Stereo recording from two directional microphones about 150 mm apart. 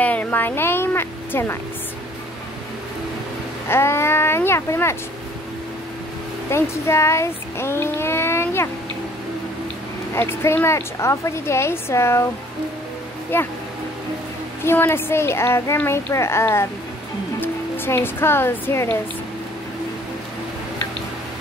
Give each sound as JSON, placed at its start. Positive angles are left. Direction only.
{"t": 0.0, "sound": "a woman's voice", "side_deg": 10}
{"t": 3.6, "sound": "a woman's voice", "side_deg": 15}
{"t": 6.5, "sound": "child singing", "side_deg": 20}
{"t": 10.1, "sound": "a woman's voice", "side_deg": 15}
{"t": 13.3, "sound": "a woman's voice", "side_deg": 15}
{"t": 14.6, "sound": "a woman's voice", "side_deg": 15}